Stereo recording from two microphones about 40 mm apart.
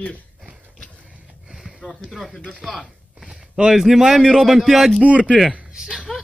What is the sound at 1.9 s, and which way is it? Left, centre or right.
Speech, centre.